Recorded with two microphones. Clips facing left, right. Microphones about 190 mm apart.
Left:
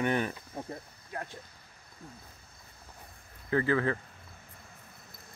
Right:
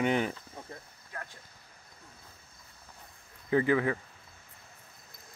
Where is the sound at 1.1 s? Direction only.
20° left (ahead or behind).